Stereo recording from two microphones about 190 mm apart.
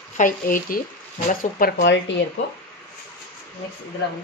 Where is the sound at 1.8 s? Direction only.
70° left (ahead or behind).